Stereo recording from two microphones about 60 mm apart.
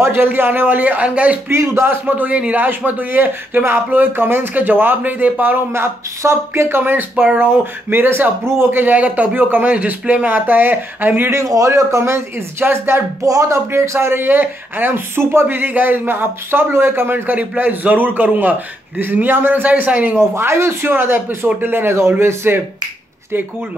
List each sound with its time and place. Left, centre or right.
0.0 s speech: right
1.5 s a man's voice: right
5.7 s speech: right
6.8 s a man's voice: right
11.3 s speech: right
13.2 s speech: right
13.7 s a man's voice: right
17.3 s a man's voice: right
20.2 s a man's voice: right